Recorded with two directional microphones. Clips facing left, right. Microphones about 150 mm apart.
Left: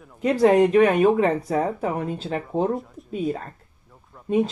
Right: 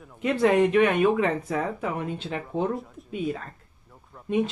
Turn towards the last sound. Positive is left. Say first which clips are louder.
# even
turn(degrees=0)  # may be behind; listen again after turning